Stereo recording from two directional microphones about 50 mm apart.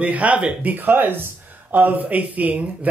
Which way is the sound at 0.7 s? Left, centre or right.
Right.